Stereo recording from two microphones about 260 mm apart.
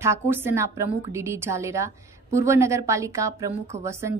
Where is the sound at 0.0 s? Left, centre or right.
Centre.